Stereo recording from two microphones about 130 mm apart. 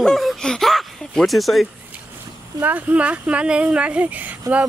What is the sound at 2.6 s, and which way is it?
Speech, 15° right (ahead or behind).